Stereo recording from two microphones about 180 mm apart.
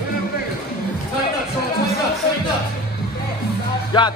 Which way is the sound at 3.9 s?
25° left (ahead or behind).